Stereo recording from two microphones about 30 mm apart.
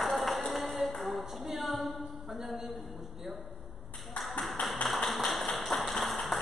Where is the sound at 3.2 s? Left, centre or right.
Centre.